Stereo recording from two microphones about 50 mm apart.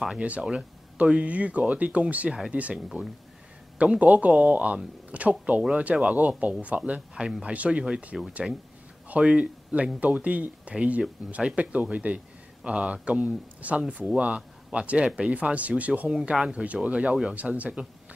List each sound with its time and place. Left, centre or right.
0.4 s speech: centre
8.4 s speech: centre
9.1 s speech: right